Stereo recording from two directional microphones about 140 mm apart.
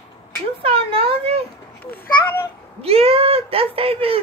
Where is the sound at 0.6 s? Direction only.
40° right (ahead or behind).